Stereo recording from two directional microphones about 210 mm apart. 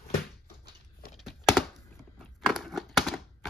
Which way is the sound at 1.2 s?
Centre (ahead or behind).